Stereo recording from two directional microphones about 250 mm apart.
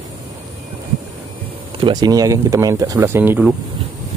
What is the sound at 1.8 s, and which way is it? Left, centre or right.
Speech, centre.